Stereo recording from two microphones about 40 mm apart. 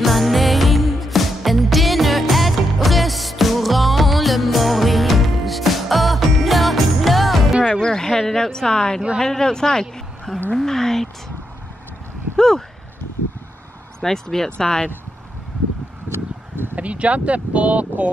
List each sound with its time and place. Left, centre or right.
0.0 s music: centre
7.5 s music: centre
7.8 s a sound: centre
9.2 s speech: centre
10.5 s a sound: centre
12.4 s speech: centre
14.0 s speech: centre
16.7 s speech: right